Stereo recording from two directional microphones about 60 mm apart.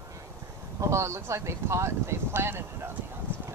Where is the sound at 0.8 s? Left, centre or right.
Right.